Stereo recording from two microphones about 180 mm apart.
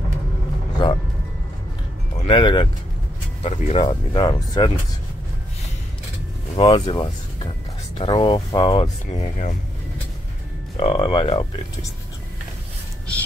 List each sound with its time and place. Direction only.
0.8 s speech: 30° left (ahead or behind)
2.2 s speech: 25° left (ahead or behind)
3.4 s speech: 35° left (ahead or behind)
3.8 s speech: 25° left (ahead or behind)
6.5 s speech: 25° left (ahead or behind)
9.0 s speech: 45° left (ahead or behind)
10.8 s speech: 30° left (ahead or behind)